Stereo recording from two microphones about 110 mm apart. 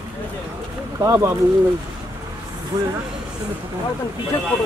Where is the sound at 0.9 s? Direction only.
25° right (ahead or behind).